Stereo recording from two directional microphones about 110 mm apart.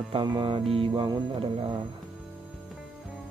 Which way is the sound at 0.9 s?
40° right (ahead or behind).